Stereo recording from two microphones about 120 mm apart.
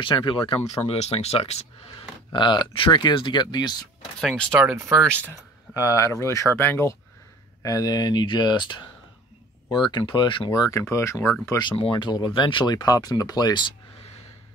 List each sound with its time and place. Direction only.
0.0 s speech: 40° left (ahead or behind)
0.8 s speech: 60° left (ahead or behind)
2.3 s speech: 40° left (ahead or behind)
4.2 s speech: centre (ahead or behind)
4.5 s speech: 10° right (ahead or behind)
4.7 s speech: 25° right (ahead or behind)
5.8 s speech: 25° left (ahead or behind)
7.6 s speech: 30° left (ahead or behind)
9.8 s speech: 40° left (ahead or behind)
10.5 s speech: 30° left (ahead or behind)
11.7 s speech: 45° left (ahead or behind)